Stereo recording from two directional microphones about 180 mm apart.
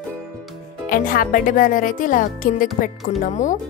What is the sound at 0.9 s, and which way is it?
Speech, 50° left (ahead or behind).